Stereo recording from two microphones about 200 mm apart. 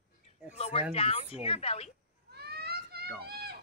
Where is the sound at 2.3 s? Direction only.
55° right (ahead or behind).